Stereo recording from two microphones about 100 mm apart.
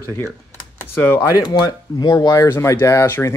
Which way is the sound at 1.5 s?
40° left (ahead or behind).